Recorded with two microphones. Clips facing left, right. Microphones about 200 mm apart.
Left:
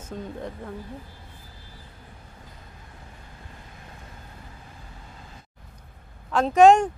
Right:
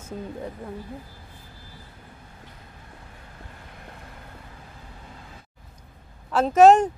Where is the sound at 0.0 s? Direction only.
10° right (ahead or behind).